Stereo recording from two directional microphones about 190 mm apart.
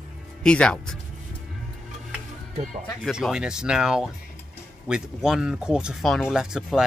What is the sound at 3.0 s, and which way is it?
Speech, centre (ahead or behind).